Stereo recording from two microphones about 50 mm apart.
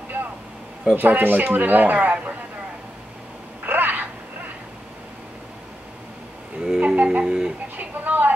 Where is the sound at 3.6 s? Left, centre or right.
Right.